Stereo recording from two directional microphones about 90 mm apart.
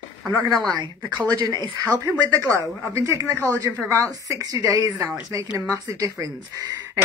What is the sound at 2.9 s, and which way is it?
Speech, 35° right (ahead or behind).